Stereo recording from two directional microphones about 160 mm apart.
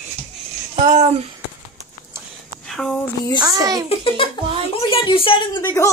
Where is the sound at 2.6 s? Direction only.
Centre (ahead or behind).